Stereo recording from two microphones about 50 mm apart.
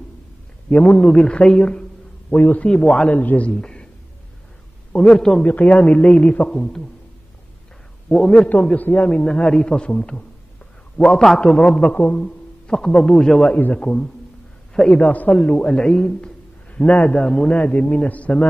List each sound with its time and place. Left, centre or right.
0.7 s a man's voice: left
2.3 s a man's voice: left
2.7 s a man's voice: centre
3.2 s a man's voice: left
3.5 s a sound: centre
4.9 s a man's voice: centre
5.4 s a man's voice: left; by 6.9 s centre
8.1 s a man's voice: centre
8.5 s a man's voice: left
9.2 s a man's voice: centre
11.4 s a man's voice: centre
12.0 s a sound: left
12.7 s a man's voice: centre; by 18.3 s left